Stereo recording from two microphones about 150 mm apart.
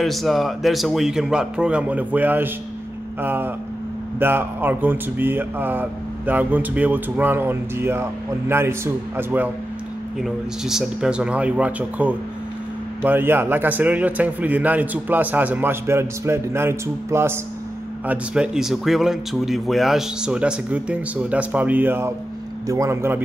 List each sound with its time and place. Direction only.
0.0 s a man's voice: centre (ahead or behind)
10.2 s speech: 5° right (ahead or behind)